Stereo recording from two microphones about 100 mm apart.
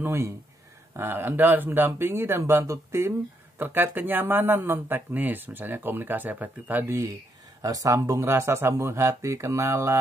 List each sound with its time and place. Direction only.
0.0 s speech: 25° right (ahead or behind)
7.6 s speech: 35° right (ahead or behind)